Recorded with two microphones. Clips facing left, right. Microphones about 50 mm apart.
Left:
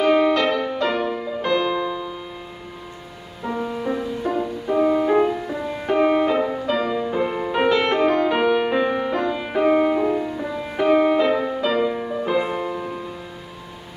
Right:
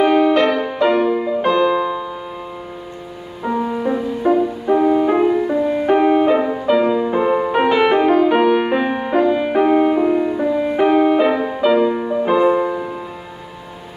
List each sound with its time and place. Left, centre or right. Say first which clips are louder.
0.3 s music: right 4 dB; centre
3.4 s music: right 5 dB; centre